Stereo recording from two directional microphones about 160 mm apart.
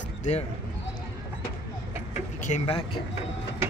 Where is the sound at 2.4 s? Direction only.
50° left (ahead or behind).